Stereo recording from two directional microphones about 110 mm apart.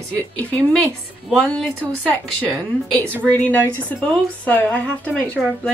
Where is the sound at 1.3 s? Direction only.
10° left (ahead or behind).